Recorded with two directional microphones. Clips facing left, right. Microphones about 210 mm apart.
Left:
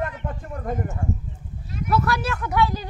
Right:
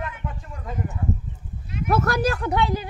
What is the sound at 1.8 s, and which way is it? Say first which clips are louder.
Speech: right 2 dB; 45° right (ahead or behind).